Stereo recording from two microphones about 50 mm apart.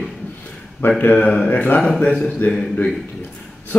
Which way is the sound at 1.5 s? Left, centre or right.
Left.